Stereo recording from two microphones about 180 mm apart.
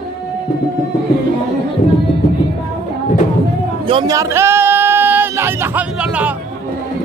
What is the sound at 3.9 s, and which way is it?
Speech, 30° right (ahead or behind).